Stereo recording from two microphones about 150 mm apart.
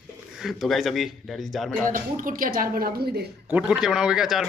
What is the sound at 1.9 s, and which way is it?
A woman's voice, 65° right (ahead or behind).